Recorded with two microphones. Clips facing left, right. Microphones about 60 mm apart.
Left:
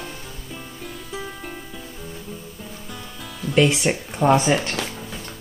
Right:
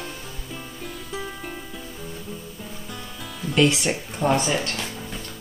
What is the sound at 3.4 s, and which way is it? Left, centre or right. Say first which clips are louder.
Speech: left 2 dB; centre.